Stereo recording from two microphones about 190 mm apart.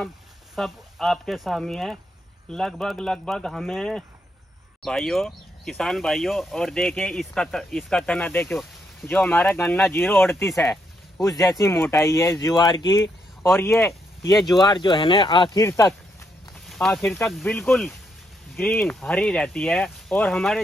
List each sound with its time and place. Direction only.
0.6 s speech: centre (ahead or behind); by 15.9 s 15° left (ahead or behind)
16.6 s speech: centre (ahead or behind)